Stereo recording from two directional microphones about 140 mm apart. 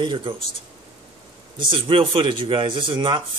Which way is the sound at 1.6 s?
35° right (ahead or behind).